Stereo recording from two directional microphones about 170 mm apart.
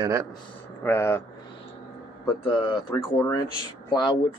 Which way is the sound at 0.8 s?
15° left (ahead or behind).